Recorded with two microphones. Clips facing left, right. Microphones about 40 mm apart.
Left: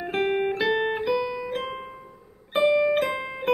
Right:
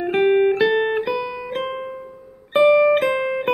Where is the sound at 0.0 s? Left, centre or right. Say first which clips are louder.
Right 8 dB; centre.